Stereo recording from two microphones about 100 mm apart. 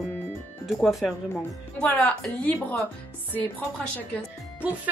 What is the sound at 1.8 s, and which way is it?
Speech, 15° left (ahead or behind).